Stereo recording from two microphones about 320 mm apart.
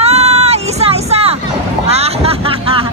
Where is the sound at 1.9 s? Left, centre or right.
Centre.